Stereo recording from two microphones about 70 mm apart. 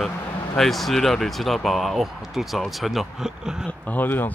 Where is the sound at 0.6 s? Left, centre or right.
Centre.